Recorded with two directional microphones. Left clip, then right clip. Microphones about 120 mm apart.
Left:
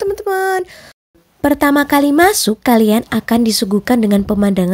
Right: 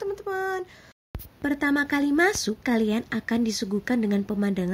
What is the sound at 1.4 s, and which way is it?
Speech, 45° left (ahead or behind).